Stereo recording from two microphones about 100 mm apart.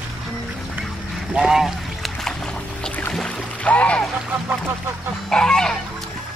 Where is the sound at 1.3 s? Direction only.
5° right (ahead or behind).